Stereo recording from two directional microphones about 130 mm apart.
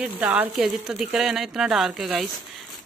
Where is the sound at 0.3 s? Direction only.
5° right (ahead or behind).